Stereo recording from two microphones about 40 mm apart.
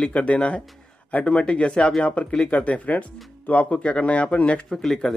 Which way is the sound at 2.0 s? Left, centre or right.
Left.